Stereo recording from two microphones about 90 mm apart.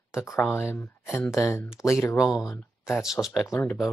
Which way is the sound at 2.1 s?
5° right (ahead or behind).